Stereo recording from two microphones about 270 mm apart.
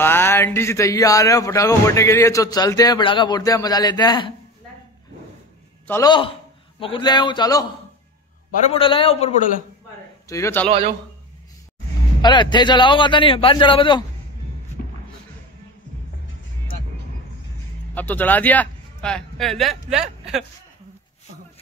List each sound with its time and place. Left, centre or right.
0.0 s speech: centre
5.9 s speech: centre
8.6 s a man's voice: centre
10.2 s a man's voice: centre
12.2 s speech: centre
17.9 s a man's voice: centre